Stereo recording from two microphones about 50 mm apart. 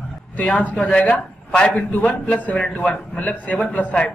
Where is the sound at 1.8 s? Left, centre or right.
Left.